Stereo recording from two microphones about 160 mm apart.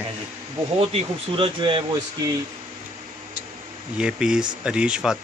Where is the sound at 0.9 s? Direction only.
35° right (ahead or behind).